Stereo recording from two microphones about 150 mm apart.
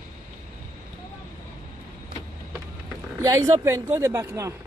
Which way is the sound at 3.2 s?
20° right (ahead or behind).